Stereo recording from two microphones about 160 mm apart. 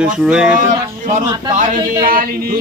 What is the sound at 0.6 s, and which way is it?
A man's voice, 50° right (ahead or behind).